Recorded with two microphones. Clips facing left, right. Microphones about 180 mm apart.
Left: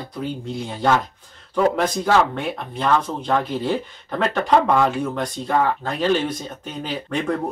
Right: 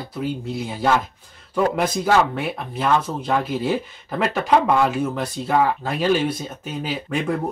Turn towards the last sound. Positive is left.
turn(degrees=-5)  # may be behind; listen again after turning